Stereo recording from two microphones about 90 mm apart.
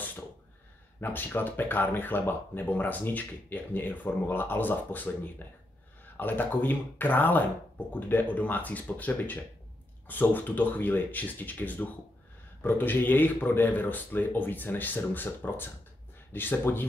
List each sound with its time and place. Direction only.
1.0 s speech: 20° left (ahead or behind)